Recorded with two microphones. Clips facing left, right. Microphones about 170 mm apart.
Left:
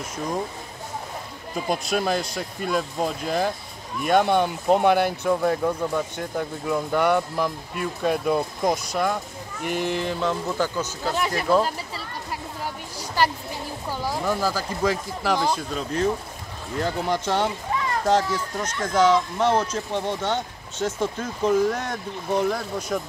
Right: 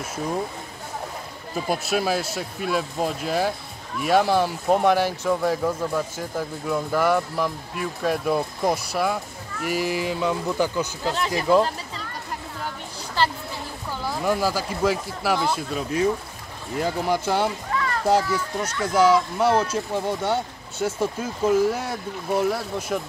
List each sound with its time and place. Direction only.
1.5 s speech: 5° right (ahead or behind)
11.1 s speech: 10° left (ahead or behind)
13.2 s speech: 10° left (ahead or behind)
14.2 s speech: 10° right (ahead or behind)
17.7 s a sound: 20° left (ahead or behind)
18.0 s speech: 10° right (ahead or behind)